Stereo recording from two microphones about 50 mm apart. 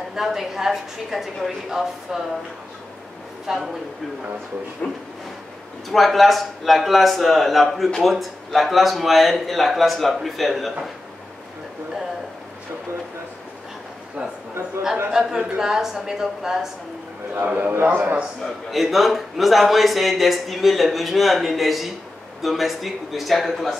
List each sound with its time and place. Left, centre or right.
0.1 s a woman's voice: centre
3.4 s a man's voice: centre
5.9 s a man's voice: centre
15.0 s a woman's voice: centre
17.6 s a man's voice: right
18.7 s a man's voice: centre